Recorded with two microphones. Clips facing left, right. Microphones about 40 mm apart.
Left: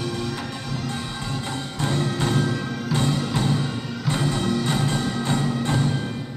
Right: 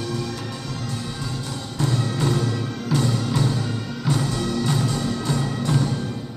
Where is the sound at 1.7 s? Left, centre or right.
Left.